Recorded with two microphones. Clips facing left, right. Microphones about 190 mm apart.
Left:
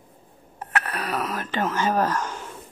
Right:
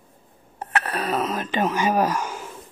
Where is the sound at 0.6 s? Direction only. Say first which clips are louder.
Right 2 dB; 30° right (ahead or behind); by 2.4 s 10° right (ahead or behind).